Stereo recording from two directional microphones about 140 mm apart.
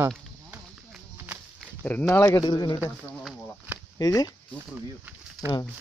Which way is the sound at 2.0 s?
20° left (ahead or behind).